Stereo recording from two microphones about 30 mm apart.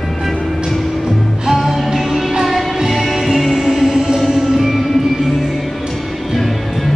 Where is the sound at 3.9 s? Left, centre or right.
Right.